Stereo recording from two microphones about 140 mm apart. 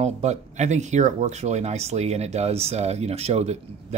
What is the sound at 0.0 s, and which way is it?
Speech, 55° right (ahead or behind).